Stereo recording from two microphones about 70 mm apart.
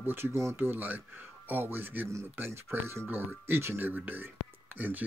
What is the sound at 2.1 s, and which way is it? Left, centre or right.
Speech, right.